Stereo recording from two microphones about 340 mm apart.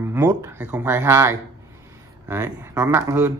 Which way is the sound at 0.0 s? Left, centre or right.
Centre.